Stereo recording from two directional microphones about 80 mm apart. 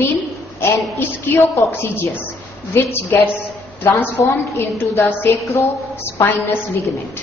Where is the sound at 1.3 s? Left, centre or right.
Left.